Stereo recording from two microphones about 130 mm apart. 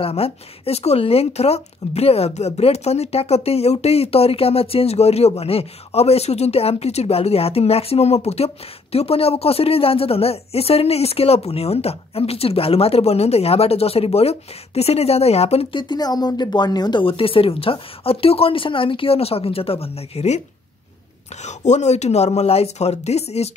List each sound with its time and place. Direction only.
0.0 s speech: 50° left (ahead or behind)
21.5 s speech: 65° left (ahead or behind)